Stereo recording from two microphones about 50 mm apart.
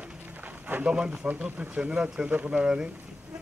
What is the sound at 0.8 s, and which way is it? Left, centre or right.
A man's voice, centre.